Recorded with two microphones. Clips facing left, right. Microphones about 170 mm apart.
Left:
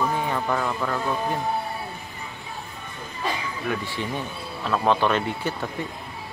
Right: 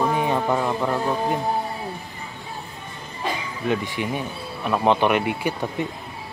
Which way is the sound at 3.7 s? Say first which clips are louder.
Right 5 dB; 15° right (ahead or behind).